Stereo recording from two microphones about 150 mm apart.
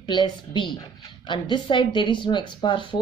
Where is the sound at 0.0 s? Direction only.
30° left (ahead or behind).